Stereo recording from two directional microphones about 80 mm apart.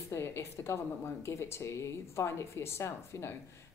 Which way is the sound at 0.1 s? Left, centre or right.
Left.